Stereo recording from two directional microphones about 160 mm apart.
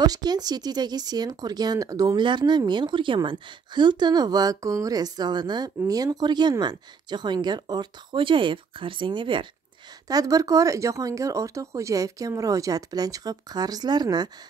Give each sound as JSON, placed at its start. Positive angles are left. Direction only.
{"t": 0.0, "sound": "speech", "side_deg": -25}